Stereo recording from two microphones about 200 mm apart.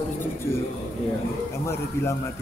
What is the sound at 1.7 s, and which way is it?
Speech, 10° left (ahead or behind).